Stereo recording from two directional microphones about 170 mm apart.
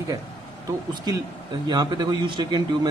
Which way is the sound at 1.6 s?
25° right (ahead or behind).